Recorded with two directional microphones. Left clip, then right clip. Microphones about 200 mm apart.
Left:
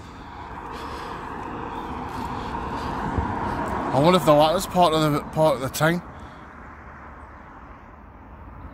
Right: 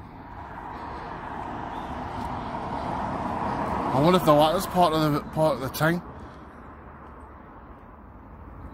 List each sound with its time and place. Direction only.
0.6 s vehicle: 25° right (ahead or behind); by 3.9 s 50° right (ahead or behind)
3.9 s speech: 5° left (ahead or behind)